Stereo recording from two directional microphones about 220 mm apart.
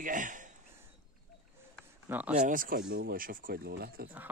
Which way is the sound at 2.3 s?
35° right (ahead or behind).